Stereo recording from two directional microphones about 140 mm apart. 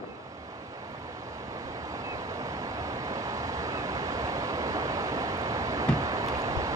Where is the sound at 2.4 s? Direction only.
25° right (ahead or behind).